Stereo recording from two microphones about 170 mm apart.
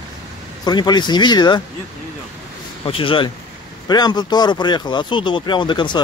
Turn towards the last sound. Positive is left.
turn(degrees=25)  # may be behind; listen again after turning